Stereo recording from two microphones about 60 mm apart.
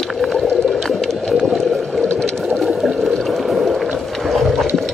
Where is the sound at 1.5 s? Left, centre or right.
Centre.